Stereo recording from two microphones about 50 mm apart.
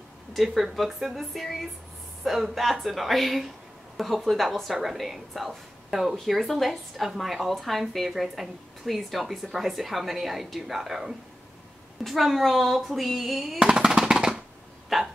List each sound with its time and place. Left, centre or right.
0.4 s a woman's voice: centre
13.7 s drum: centre
14.9 s a woman's voice: centre